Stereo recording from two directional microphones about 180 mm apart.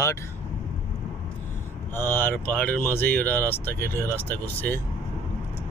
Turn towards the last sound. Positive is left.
turn(degrees=10)  # may be behind; listen again after turning